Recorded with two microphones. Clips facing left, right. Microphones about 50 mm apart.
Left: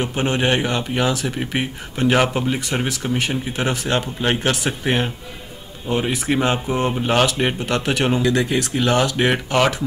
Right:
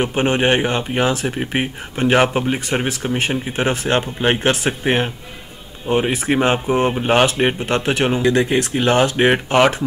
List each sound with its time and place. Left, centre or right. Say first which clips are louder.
0.0 s speech: right 3 dB; right